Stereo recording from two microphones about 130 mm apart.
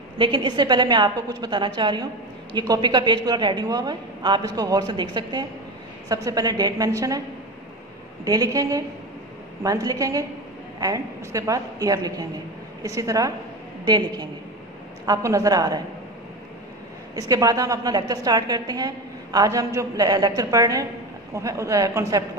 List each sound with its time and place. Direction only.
0.2 s a woman's voice: 35° right (ahead or behind)
8.3 s a woman's voice: 30° right (ahead or behind)
17.1 s a woman's voice: 30° right (ahead or behind)